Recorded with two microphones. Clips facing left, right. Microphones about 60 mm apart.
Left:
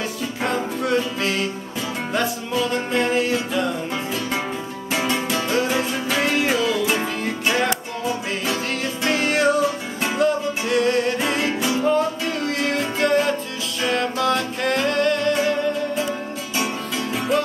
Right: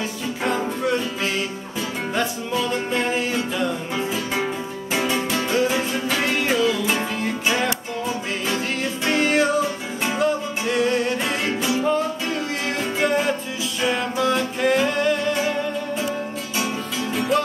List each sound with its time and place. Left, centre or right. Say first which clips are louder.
0.4 s music: even; centre